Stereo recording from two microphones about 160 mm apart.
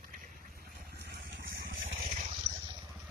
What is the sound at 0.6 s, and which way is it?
Vehicle, 85° right.